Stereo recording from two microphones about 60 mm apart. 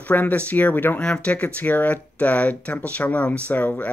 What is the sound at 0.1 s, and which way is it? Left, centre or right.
Speech, left.